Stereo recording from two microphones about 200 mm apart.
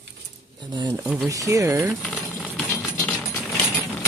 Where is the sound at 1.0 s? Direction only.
5° right (ahead or behind).